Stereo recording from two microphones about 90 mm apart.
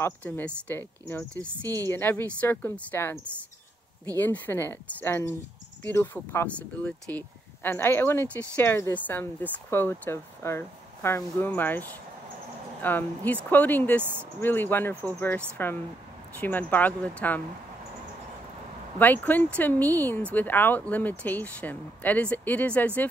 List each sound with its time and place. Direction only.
0.2 s speech: 15° left (ahead or behind)
4.2 s speech: 20° left (ahead or behind)
18.9 s speech: 20° left (ahead or behind)